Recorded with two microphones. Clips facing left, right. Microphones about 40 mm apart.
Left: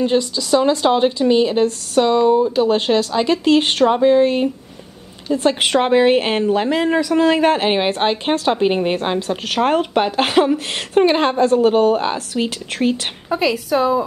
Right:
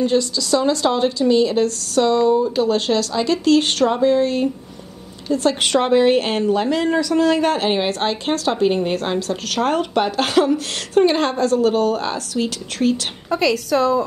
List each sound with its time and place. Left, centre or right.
0.0 s a woman's voice: left
13.3 s a woman's voice: centre